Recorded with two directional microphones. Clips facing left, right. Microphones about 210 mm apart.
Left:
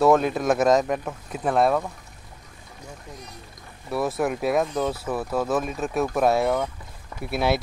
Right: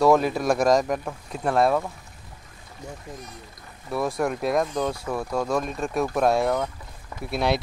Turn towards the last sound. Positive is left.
turn(degrees=5)  # may be behind; listen again after turning